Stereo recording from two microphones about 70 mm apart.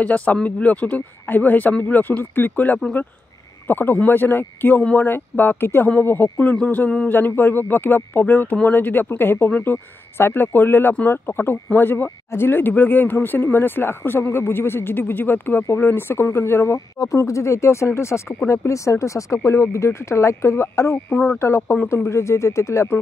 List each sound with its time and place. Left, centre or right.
0.0 s speech: left
16.7 s speech: left